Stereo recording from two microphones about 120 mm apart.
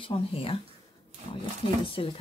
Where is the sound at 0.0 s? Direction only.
50° left (ahead or behind).